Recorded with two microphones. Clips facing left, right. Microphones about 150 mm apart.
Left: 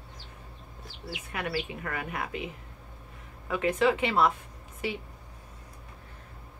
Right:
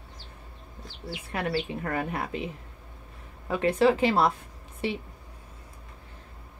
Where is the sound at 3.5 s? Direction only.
35° right (ahead or behind).